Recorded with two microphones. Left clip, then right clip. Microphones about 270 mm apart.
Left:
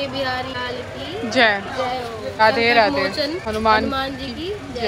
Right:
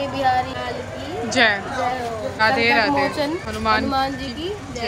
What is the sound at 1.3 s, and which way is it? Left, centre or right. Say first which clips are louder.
A woman's voice: left 1 dB; centre.